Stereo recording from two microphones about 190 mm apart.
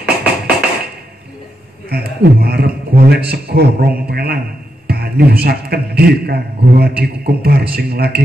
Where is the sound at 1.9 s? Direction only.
55° right (ahead or behind).